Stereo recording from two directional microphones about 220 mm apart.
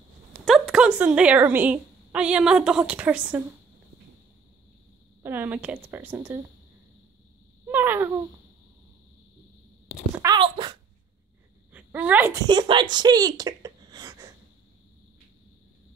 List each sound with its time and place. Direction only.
0.5 s a woman's voice: 5° right (ahead or behind)
5.2 s a woman's voice: 10° right (ahead or behind)
7.6 s a woman's voice: 10° right (ahead or behind)
10.2 s a sound: 20° right (ahead or behind)
11.7 s a sound: 5° right (ahead or behind)
12.4 s speech: 20° right (ahead or behind)